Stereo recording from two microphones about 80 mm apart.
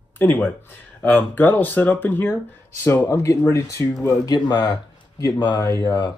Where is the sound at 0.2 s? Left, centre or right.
Left.